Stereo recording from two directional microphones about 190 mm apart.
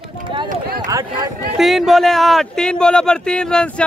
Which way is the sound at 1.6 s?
Centre (ahead or behind).